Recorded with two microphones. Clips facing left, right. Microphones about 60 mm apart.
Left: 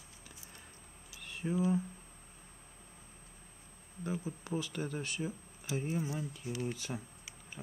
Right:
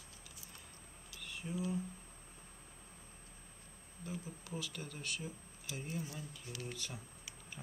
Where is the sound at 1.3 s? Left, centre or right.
Left.